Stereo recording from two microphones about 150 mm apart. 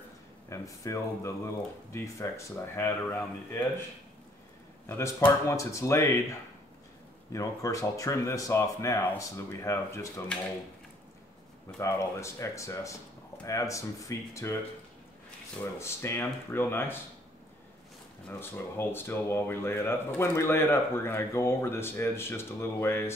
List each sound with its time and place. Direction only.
0.5 s speech: 20° left (ahead or behind)
4.8 s speech: 15° left (ahead or behind)
7.3 s speech: 20° left (ahead or behind)
11.8 s speech: 20° left (ahead or behind)
15.8 s speech: 15° left (ahead or behind)
18.4 s speech: 15° left (ahead or behind)